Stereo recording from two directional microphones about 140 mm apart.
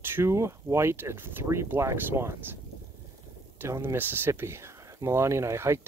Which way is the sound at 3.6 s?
15° right (ahead or behind).